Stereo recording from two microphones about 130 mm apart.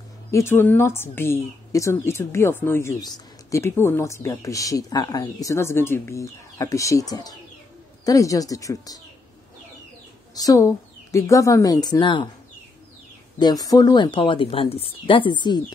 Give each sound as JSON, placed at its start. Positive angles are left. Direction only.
{"t": 0.3, "sound": "speech", "side_deg": 20}
{"t": 10.3, "sound": "speech", "side_deg": 30}
{"t": 13.4, "sound": "speech", "side_deg": 30}